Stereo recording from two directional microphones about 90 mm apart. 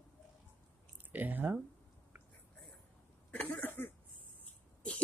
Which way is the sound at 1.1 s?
20° right (ahead or behind).